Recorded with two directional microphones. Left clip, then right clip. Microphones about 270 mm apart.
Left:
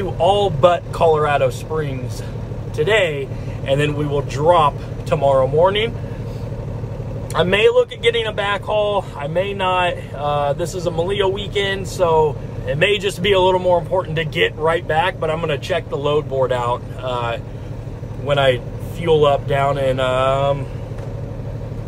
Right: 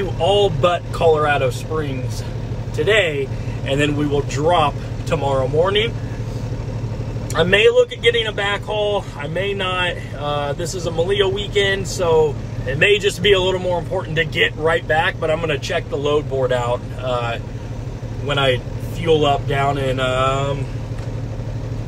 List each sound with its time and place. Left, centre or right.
0.2 s speech: centre
2.8 s speech: centre
7.3 s speech: centre